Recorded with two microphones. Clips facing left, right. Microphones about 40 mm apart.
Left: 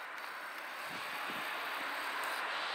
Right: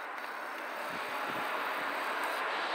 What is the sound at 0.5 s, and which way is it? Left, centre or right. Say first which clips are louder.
Vehicle: right 5 dB; right.